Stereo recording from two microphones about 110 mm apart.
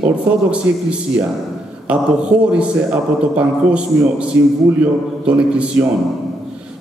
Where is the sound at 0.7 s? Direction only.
25° right (ahead or behind).